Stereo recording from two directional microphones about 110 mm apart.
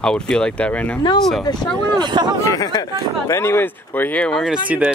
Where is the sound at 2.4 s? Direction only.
35° left (ahead or behind).